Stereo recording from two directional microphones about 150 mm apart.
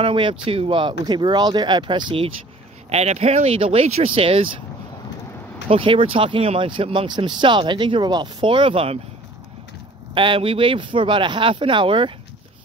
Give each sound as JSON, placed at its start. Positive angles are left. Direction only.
{"t": 0.0, "sound": "speech", "side_deg": -35}
{"t": 5.7, "sound": "speech", "side_deg": -35}
{"t": 10.1, "sound": "speech", "side_deg": -35}